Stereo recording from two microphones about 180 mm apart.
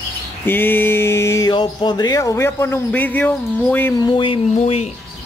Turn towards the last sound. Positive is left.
turn(degrees=35)  # may be behind; listen again after turning